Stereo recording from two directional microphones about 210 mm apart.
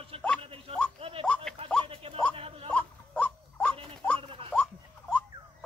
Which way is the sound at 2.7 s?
5° left (ahead or behind).